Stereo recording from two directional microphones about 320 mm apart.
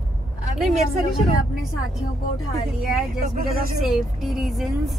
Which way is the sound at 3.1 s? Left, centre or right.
Right.